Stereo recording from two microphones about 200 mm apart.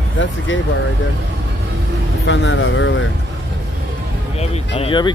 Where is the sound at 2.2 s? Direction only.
80° left.